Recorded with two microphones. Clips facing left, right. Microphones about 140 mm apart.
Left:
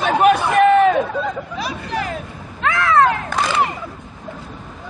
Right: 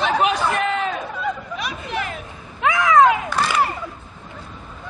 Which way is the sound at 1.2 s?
35° left (ahead or behind).